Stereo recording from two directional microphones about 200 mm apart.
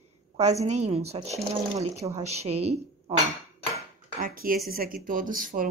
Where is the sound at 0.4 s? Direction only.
35° right (ahead or behind).